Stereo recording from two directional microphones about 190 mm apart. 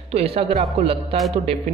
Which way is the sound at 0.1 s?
30° right (ahead or behind).